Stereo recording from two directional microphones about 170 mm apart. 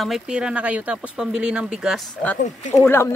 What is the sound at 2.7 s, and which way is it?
Speech, 15° left (ahead or behind).